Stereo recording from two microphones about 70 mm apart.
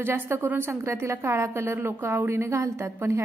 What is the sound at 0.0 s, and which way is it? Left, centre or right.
A woman's voice, right.